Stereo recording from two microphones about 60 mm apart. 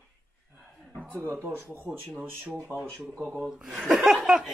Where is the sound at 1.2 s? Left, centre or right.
Right.